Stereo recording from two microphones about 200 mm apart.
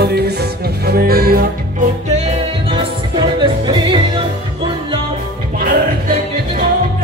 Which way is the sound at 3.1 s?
25° right (ahead or behind).